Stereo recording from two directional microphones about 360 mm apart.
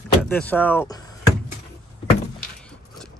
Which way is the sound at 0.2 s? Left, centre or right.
Centre.